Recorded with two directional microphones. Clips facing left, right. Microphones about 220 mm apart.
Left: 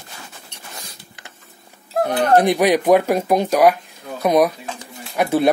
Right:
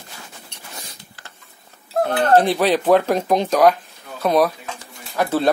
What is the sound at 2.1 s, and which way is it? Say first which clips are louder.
Speech: left 1 dB; 15° left (ahead or behind).